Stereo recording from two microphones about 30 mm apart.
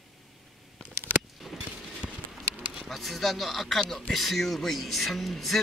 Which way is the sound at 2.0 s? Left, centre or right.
Right.